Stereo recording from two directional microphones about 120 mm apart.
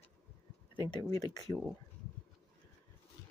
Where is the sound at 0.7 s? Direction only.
35° left (ahead or behind).